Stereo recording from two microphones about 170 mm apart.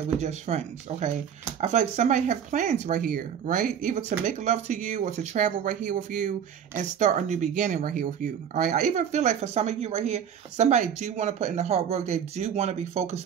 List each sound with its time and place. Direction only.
0.2 s speech: 40° right (ahead or behind)